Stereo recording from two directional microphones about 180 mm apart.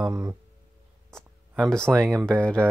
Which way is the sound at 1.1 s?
Centre (ahead or behind).